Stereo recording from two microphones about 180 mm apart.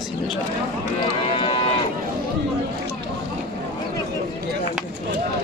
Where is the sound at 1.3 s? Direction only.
30° left (ahead or behind).